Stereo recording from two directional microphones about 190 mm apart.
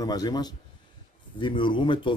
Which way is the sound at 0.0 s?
20° left (ahead or behind).